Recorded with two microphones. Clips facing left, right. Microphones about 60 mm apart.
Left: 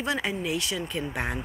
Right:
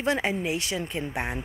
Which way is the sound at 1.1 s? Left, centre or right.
Centre.